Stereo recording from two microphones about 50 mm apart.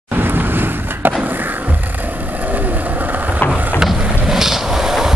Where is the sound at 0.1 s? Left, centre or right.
Right.